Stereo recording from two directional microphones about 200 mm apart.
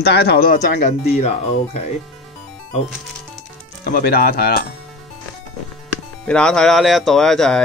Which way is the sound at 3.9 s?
50° left (ahead or behind).